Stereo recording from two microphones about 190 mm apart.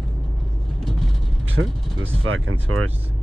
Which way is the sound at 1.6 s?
90° right.